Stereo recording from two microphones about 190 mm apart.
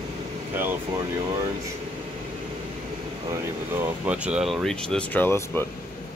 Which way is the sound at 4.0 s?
5° right (ahead or behind).